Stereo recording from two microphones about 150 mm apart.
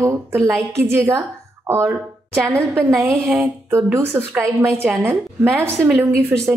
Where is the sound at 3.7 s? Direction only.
15° right (ahead or behind).